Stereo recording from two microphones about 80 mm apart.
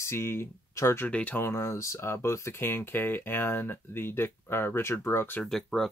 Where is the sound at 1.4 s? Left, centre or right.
Left.